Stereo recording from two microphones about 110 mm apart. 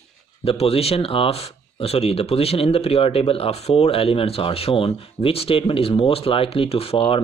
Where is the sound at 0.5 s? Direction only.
65° left (ahead or behind).